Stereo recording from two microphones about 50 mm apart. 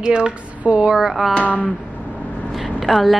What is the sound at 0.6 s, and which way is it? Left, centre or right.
Speech, right.